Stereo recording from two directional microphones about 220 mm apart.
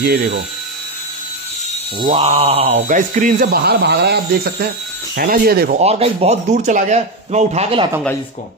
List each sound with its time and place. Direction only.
0.0 s speech: 45° right (ahead or behind)
2.0 s speech: 30° right (ahead or behind); by 5.8 s 45° right (ahead or behind)
5.8 s a man's voice: 25° right (ahead or behind)